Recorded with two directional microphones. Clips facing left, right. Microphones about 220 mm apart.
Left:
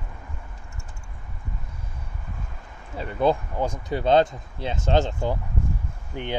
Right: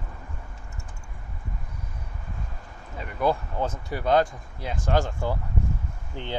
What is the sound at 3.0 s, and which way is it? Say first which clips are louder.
Speech: left 3 dB; 25° left (ahead or behind).